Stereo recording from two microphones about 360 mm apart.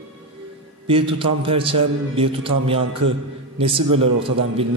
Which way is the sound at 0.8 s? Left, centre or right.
Centre.